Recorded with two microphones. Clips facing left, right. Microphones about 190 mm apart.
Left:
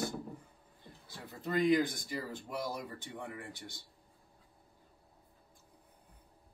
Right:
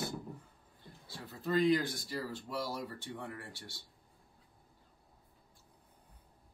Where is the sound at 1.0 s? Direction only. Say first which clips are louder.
Right 2 dB; 15° left (ahead or behind).